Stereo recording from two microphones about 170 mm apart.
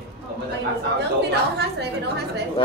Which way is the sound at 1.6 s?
75° right (ahead or behind).